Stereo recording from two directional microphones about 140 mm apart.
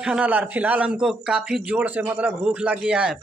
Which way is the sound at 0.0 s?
10° right (ahead or behind).